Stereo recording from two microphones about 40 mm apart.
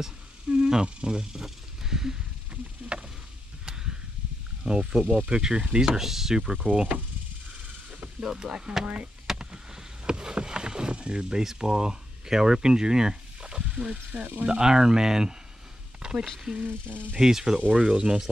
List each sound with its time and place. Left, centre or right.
0.5 s speech: right
2.5 s a sound: right
3.6 s a sound: centre
4.6 s speech: centre
5.9 s speech: centre
8.2 s speech: centre
9.4 s vehicle: centre
13.4 s stir: right
14.4 s speech: centre
16.0 s a sound: right
16.6 s speech: right
17.2 s speech: centre
17.6 s speech: right